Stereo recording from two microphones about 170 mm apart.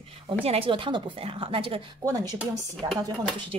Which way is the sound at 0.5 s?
30° right (ahead or behind).